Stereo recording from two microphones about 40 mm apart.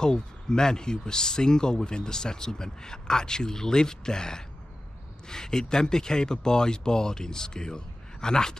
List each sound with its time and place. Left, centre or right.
0.0 s speech: centre